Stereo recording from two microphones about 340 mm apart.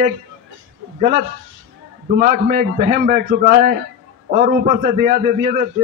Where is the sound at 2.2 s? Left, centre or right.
Centre.